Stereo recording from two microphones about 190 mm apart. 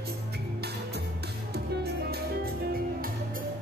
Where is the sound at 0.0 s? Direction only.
55° right (ahead or behind).